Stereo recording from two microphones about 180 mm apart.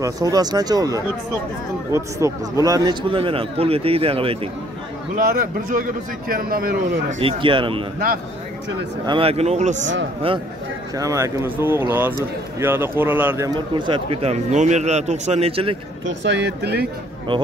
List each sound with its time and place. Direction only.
0.0 s speech: 20° right (ahead or behind)
5.1 s a man's voice: 50° right (ahead or behind)
7.2 s speech: 30° right (ahead or behind)
9.0 s speech: 30° right (ahead or behind)
11.0 s speech: 20° right (ahead or behind)
13.7 s speech: 30° right (ahead or behind)
16.3 s speech: 70° right (ahead or behind)